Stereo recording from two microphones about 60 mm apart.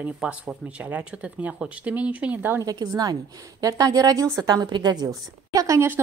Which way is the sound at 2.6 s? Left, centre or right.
Right.